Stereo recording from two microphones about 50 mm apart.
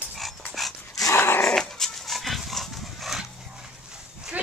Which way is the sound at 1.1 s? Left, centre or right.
Left.